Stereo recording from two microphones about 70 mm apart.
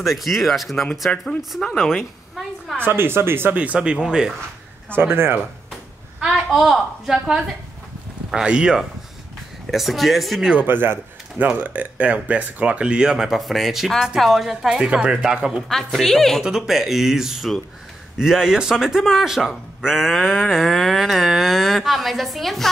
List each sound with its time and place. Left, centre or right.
0.0 s a man's voice: centre
1.1 s speech: centre
1.6 s a woman's voice: centre
2.8 s speech: right
3.5 s speech: centre
4.9 s speech: right
6.2 s a woman's voice: centre
9.7 s a man's voice: centre
10.5 s speech: right; by 15.6 s centre
15.7 s a man's voice: centre